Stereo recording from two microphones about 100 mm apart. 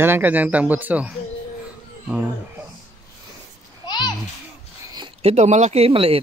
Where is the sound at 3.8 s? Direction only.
45° left (ahead or behind).